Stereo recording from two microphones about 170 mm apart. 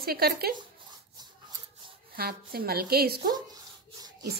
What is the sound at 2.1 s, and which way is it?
Speech, 60° right (ahead or behind).